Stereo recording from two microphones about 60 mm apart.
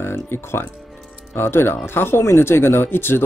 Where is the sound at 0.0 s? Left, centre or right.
Left.